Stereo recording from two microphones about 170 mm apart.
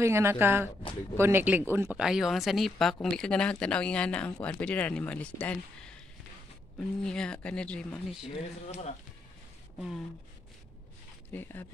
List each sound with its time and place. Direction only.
0.0 s speech: 15° right (ahead or behind); by 8.3 s 5° left (ahead or behind)
8.6 s speech: 40° left (ahead or behind)
11.3 s speech: 10° left (ahead or behind)